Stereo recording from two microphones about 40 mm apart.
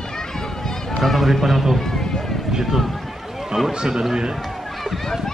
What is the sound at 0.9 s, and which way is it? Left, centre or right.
Speech, centre.